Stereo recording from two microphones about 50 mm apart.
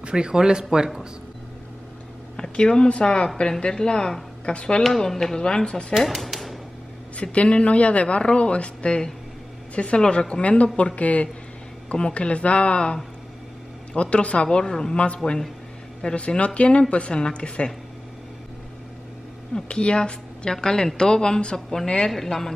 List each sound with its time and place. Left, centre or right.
0.0 s speech: centre
2.3 s a woman's voice: centre
4.8 s speech: centre
5.9 s a sound: centre
7.2 s a man's voice: left
14.1 s a man's voice: left
19.5 s speech: left
21.5 s a woman's voice: centre
21.8 s speech: centre